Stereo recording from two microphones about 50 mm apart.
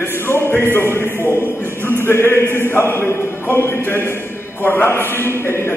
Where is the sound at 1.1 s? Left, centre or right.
Left.